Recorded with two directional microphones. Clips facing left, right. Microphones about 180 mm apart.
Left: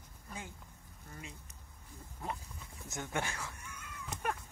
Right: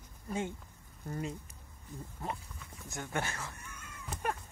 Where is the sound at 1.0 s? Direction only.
45° right (ahead or behind).